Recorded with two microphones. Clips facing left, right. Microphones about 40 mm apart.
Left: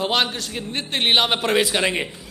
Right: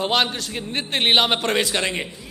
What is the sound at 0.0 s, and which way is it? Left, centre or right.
A man's voice, centre.